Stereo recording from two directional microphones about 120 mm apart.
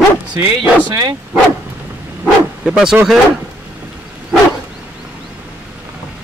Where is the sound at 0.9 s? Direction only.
30° right (ahead or behind).